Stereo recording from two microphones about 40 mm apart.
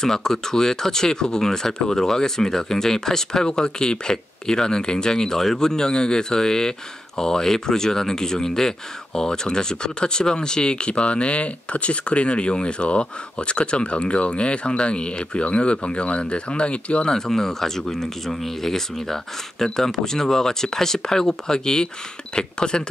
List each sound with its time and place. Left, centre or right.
0.0 s speech: centre; by 17.1 s left
17.1 s speech: centre